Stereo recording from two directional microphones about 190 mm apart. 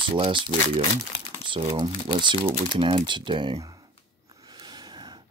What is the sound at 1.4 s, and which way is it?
Speech, 25° right (ahead or behind).